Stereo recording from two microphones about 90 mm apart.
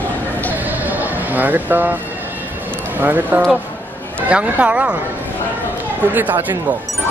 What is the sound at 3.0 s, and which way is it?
A man's voice, 20° right (ahead or behind).